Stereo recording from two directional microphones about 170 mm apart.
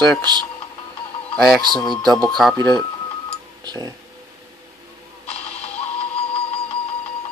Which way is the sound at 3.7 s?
25° right (ahead or behind).